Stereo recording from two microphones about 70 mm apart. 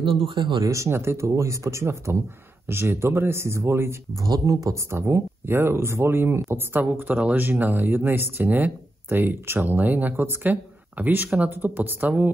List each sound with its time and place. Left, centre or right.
0.6 s speech: right
0.8 s speech: right
4.2 s speech: right
4.8 s speech: right